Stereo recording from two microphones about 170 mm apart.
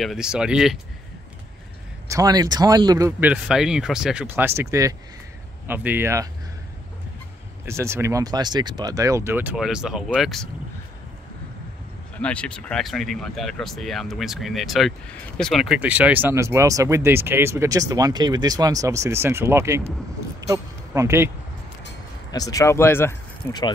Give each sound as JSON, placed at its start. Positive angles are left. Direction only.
{"t": 0.0, "sound": "speech", "side_deg": -5}
{"t": 2.0, "sound": "speech", "side_deg": -20}
{"t": 7.6, "sound": "speech", "side_deg": -15}
{"t": 12.2, "sound": "speech", "side_deg": 5}
{"t": 20.3, "sound": "a sound", "side_deg": -20}
{"t": 22.3, "sound": "speech", "side_deg": 20}